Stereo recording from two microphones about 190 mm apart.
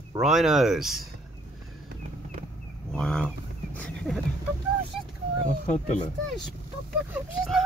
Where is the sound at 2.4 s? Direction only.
40° right (ahead or behind).